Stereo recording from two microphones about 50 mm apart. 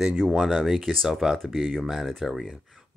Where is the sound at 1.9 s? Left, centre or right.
Centre.